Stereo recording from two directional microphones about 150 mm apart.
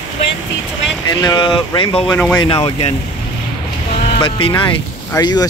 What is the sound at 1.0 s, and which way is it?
Speech, 25° left (ahead or behind).